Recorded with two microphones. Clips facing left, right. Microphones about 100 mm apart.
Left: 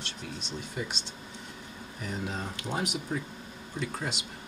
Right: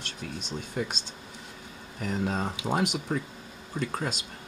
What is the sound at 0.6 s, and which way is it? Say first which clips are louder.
Speech: right 4 dB; 50° right (ahead or behind).